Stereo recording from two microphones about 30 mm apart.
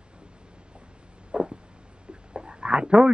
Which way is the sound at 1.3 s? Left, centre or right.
Right.